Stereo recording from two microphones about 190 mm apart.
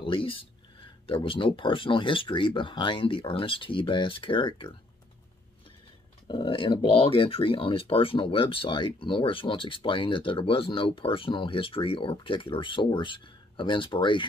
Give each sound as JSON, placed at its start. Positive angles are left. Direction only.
{"t": 0.0, "sound": "speech", "side_deg": 25}
{"t": 6.2, "sound": "speech", "side_deg": 25}